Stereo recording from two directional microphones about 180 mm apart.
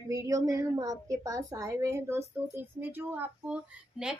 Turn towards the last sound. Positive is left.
turn(degrees=-5)  # may be behind; listen again after turning